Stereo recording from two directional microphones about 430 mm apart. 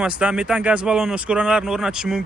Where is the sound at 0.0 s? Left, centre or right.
Centre.